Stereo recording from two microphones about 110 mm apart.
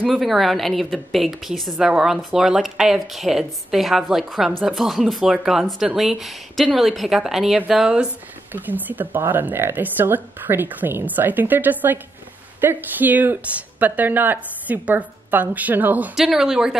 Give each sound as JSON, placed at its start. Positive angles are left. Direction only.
{"t": 0.0, "sound": "speech", "side_deg": 0}
{"t": 16.2, "sound": "speech", "side_deg": -5}